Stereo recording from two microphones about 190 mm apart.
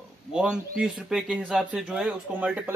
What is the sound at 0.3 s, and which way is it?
A man's voice, 5° right (ahead or behind).